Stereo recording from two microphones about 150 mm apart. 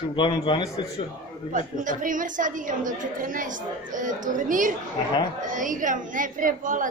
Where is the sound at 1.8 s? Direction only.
60° right (ahead or behind).